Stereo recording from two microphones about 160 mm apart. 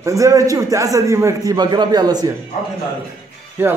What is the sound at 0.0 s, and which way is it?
A man's voice, 20° right (ahead or behind).